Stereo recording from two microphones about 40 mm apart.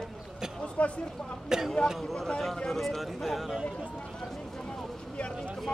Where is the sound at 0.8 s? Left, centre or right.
Left.